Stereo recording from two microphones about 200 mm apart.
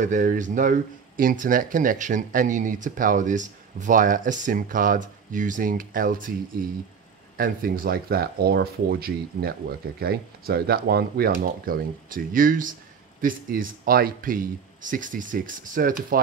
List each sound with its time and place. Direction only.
0.0 s speech: 40° right (ahead or behind)